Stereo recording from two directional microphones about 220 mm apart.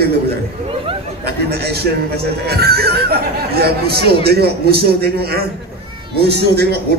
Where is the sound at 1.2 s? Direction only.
45° right (ahead or behind).